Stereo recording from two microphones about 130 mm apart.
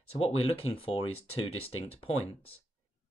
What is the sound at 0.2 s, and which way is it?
Speech, 45° left (ahead or behind).